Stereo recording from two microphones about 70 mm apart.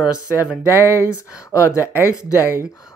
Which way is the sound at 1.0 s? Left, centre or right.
Left.